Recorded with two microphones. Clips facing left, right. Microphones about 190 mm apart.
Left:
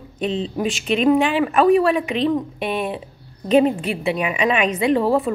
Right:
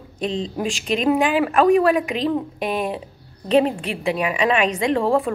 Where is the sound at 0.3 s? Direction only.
5° left (ahead or behind).